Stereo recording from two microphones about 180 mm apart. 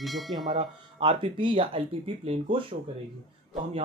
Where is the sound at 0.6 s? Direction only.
30° right (ahead or behind).